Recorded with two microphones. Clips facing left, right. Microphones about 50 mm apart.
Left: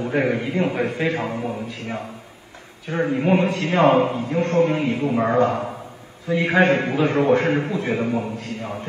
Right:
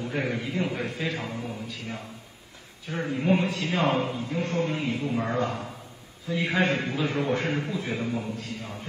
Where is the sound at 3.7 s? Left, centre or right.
Left.